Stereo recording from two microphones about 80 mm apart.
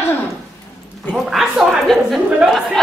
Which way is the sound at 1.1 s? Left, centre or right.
Centre.